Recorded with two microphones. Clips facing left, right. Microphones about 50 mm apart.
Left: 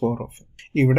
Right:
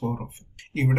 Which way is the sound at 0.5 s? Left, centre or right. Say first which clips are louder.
Left 7 dB; left.